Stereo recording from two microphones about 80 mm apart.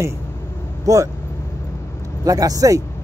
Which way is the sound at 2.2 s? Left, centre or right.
Right.